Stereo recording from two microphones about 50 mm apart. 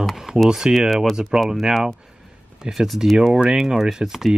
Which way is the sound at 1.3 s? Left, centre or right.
Centre.